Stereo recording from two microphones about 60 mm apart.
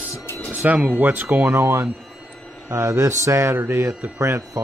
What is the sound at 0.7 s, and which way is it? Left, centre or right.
Speech, right.